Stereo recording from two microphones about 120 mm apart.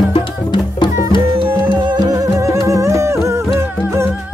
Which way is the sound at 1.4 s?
45° right (ahead or behind).